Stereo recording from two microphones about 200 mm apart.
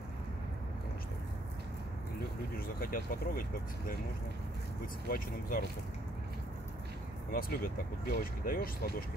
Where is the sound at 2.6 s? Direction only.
45° left (ahead or behind).